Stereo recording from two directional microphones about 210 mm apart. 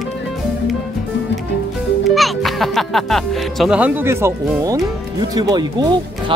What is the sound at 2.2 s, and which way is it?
Speech, centre (ahead or behind).